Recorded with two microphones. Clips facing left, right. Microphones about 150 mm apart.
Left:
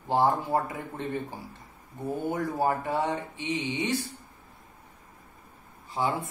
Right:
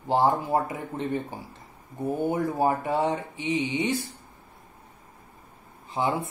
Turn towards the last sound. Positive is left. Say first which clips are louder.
# right 2 dB
turn(degrees=-20)  # may be behind; listen again after turning